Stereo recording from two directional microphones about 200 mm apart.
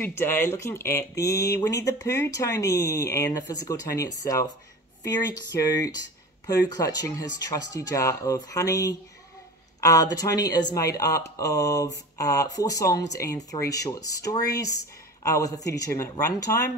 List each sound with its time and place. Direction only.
0.0 s speech: 10° left (ahead or behind)